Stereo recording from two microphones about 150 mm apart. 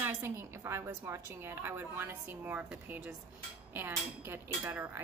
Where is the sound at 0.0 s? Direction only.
15° right (ahead or behind).